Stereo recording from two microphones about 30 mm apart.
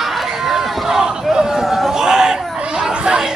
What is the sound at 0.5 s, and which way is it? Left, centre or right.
Crowd, centre.